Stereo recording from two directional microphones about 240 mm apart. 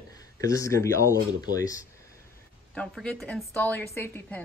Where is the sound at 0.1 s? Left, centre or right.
Centre.